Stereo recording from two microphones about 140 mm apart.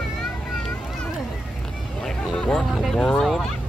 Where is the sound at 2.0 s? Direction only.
5° left (ahead or behind).